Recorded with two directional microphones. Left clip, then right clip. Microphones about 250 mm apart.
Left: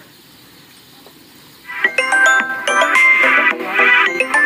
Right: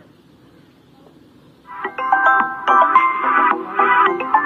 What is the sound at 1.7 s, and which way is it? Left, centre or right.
Music, left.